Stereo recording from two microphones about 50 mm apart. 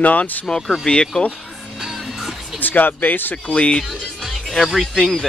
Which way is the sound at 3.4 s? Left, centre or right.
Left.